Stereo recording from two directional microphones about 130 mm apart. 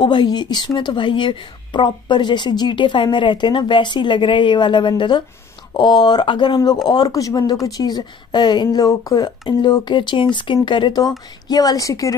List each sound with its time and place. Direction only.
0.0 s a woman's voice: 35° left (ahead or behind)